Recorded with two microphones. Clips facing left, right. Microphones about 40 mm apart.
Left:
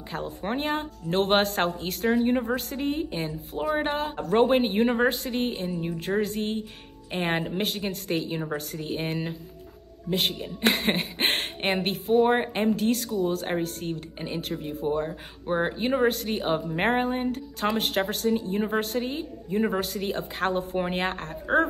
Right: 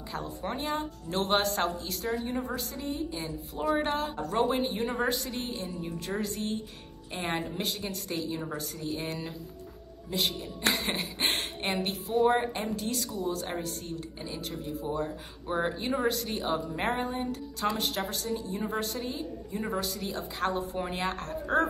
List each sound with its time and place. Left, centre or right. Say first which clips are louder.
0.1 s a woman's voice: left 5 dB; left
3.6 s a woman's voice: left 2 dB; left
15.8 s speech: left 5 dB; left